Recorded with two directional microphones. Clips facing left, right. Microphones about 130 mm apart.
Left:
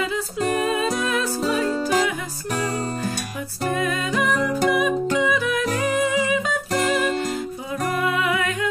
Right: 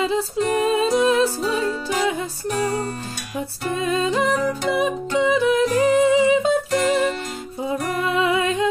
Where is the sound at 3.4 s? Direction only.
25° right (ahead or behind).